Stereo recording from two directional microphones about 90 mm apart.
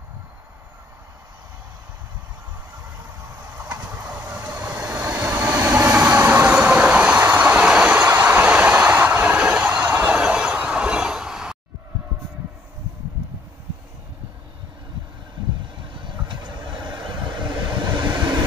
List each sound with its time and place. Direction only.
3.5 s train: 15° right (ahead or behind)
15.9 s train: 65° right (ahead or behind)
16.3 s vehicle: 55° right (ahead or behind)